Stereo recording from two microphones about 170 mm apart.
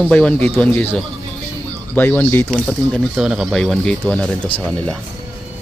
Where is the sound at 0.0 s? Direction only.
5° left (ahead or behind).